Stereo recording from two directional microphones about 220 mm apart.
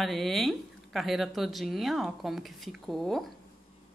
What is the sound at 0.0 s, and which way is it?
A woman's voice, centre (ahead or behind).